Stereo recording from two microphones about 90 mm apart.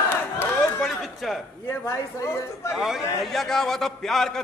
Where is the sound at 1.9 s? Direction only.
30° left (ahead or behind).